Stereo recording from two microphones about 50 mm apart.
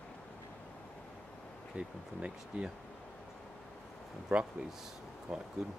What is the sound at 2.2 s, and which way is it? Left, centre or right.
Speech, right.